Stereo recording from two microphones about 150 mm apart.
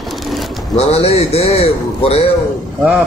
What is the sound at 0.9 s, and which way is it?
A man's voice, 40° left (ahead or behind).